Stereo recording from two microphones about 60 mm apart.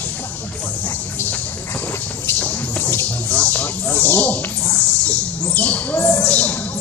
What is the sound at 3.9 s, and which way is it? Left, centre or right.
Music, left.